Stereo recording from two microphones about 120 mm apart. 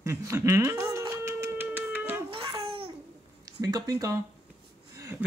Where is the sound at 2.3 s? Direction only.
45° right (ahead or behind).